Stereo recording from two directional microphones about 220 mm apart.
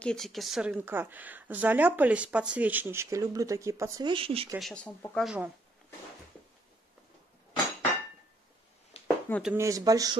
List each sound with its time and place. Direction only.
0.0 s speech: centre (ahead or behind); by 4.5 s 25° right (ahead or behind)
4.6 s speech: 5° left (ahead or behind)
9.0 s a sound: centre (ahead or behind)
9.6 s speech: 15° right (ahead or behind)